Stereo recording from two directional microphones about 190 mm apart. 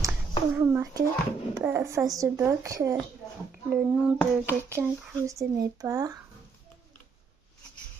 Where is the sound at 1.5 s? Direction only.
15° right (ahead or behind).